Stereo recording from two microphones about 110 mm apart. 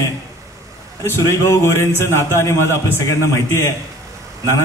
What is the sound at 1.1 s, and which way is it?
A man's voice, 25° left (ahead or behind).